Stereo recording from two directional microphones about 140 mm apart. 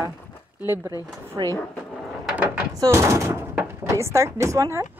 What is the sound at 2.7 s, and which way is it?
Speech, 25° right (ahead or behind).